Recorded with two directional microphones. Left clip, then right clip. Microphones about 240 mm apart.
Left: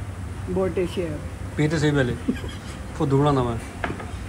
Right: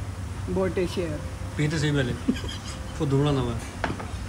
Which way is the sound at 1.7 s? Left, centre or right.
Centre.